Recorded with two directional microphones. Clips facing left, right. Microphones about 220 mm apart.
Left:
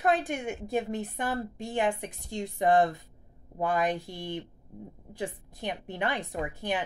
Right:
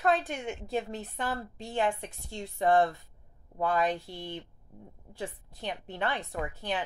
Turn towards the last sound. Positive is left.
turn(degrees=15)  # may be behind; listen again after turning